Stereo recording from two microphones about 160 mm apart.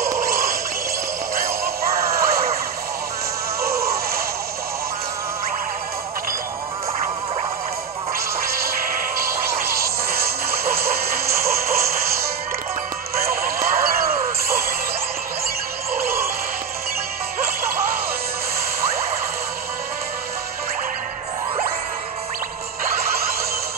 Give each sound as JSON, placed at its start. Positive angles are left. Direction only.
{"t": 0.2, "sound": "music", "side_deg": -65}
{"t": 3.6, "sound": "music", "side_deg": -75}
{"t": 9.7, "sound": "music", "side_deg": -70}
{"t": 13.2, "sound": "music", "side_deg": -65}